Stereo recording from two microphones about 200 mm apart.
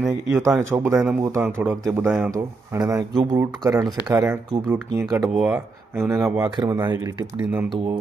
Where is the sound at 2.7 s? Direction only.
15° right (ahead or behind).